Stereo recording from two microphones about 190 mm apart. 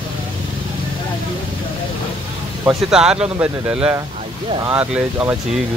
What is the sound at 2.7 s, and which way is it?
Speech, 5° right (ahead or behind).